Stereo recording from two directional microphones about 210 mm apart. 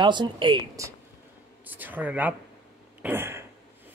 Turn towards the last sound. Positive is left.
turn(degrees=-10)  # may be behind; listen again after turning